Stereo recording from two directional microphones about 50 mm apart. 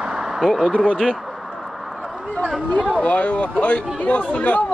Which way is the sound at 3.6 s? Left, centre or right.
Left.